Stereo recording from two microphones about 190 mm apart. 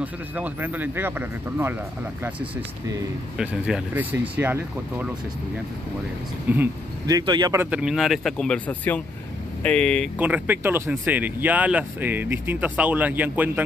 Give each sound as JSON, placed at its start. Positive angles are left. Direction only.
{"t": 0.0, "sound": "speech", "side_deg": -10}
{"t": 3.3, "sound": "speech", "side_deg": -5}
{"t": 6.5, "sound": "speech", "side_deg": -15}
{"t": 7.7, "sound": "speech", "side_deg": -5}
{"t": 10.1, "sound": "speech", "side_deg": -10}